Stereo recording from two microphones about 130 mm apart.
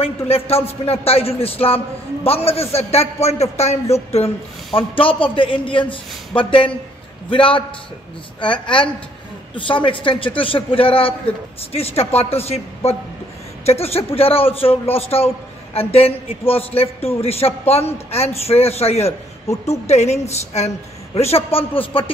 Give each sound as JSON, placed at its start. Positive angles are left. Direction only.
{"t": 0.3, "sound": "a man's voice", "side_deg": 50}
{"t": 4.7, "sound": "a man's voice", "side_deg": 45}